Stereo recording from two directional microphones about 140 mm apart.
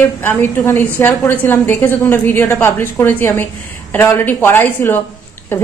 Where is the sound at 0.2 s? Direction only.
15° left (ahead or behind).